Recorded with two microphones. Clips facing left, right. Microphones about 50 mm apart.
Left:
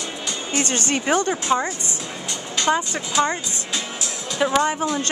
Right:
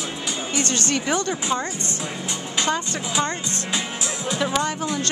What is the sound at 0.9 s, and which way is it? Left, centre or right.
A woman's voice, centre.